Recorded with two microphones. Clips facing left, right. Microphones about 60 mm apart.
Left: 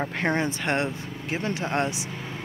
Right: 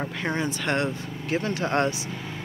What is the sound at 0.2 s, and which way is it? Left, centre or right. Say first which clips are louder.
Speech: left 3 dB; left.